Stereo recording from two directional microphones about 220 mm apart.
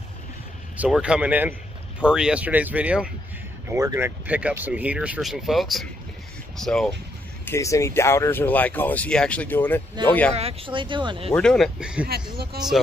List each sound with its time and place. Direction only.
0.7 s speech: 5° right (ahead or behind)
7.4 s speech: 15° left (ahead or behind)
10.0 s speech: 20° right (ahead or behind)
11.3 s speech: centre (ahead or behind)
12.5 s speech: 45° right (ahead or behind)